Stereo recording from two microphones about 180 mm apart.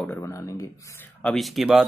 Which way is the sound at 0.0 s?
15° left (ahead or behind).